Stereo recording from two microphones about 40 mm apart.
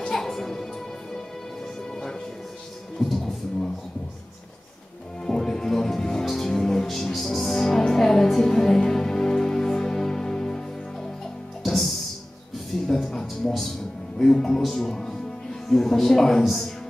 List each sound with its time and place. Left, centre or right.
0.1 s music: centre
1.9 s music: centre
3.0 s music: centre
5.2 s music: centre
11.6 s music: centre
12.8 s a sound: centre
14.1 s music: centre
15.7 s a man's voice: centre